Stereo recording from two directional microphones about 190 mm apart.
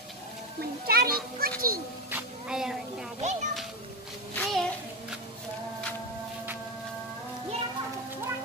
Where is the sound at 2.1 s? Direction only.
5° right (ahead or behind).